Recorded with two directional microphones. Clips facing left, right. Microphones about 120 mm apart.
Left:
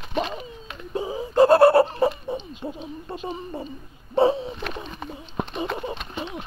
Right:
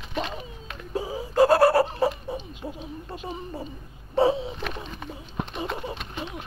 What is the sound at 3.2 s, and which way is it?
Speech, 5° right (ahead or behind).